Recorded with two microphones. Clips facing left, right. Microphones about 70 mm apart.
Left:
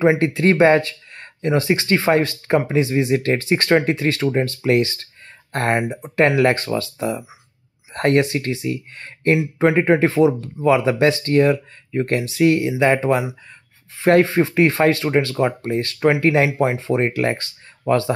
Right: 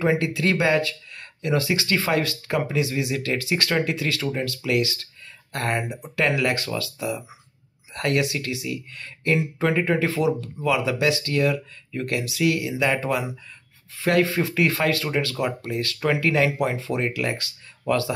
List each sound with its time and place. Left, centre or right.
0.0 s speech: left